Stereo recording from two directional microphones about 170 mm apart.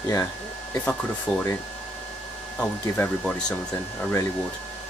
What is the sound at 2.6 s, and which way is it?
Speech, 5° left (ahead or behind).